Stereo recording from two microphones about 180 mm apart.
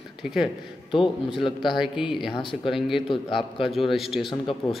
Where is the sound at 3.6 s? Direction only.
Centre (ahead or behind).